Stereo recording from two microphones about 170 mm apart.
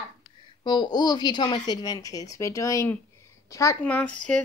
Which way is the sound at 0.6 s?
25° left (ahead or behind).